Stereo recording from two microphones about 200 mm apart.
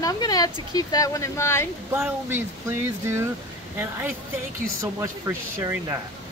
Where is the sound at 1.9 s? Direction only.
10° right (ahead or behind).